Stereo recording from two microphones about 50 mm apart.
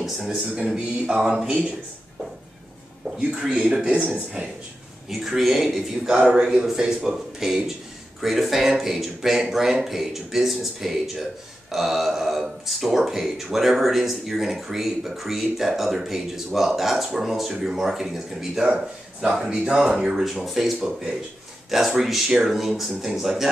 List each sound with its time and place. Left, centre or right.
0.0 s a man's voice: centre
1.2 s a man's voice: centre
3.2 s a man's voice: centre
5.2 s speech: centre
6.0 s a man's voice: centre